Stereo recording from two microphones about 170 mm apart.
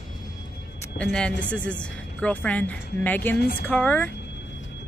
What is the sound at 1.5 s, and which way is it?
Speech, 5° left (ahead or behind).